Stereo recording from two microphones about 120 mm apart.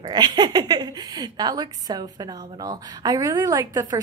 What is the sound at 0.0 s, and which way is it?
A woman's voice, 35° right (ahead or behind).